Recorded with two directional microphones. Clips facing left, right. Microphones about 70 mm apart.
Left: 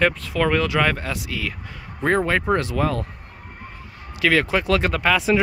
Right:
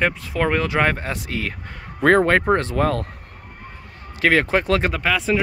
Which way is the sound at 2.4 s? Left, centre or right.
Right.